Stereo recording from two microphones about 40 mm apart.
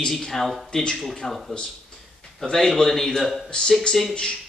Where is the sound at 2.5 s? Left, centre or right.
Centre.